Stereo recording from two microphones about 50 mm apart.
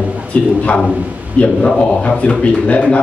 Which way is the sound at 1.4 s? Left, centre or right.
Left.